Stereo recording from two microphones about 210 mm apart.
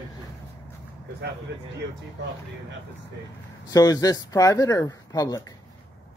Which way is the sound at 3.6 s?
15° left (ahead or behind).